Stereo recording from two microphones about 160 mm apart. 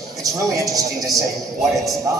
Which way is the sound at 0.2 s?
20° right (ahead or behind).